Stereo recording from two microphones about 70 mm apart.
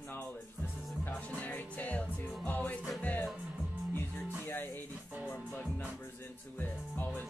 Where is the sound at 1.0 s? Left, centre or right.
Left.